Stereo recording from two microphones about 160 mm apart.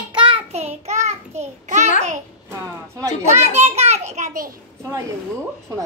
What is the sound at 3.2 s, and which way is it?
A child's voice, 45° right (ahead or behind).